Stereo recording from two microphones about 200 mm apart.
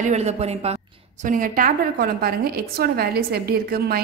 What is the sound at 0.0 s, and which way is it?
Speech, 35° right (ahead or behind).